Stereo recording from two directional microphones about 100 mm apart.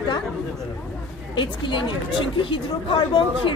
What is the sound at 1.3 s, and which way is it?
Speech, 50° left (ahead or behind).